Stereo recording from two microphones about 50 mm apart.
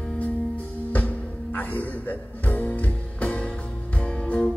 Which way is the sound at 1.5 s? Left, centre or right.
Left.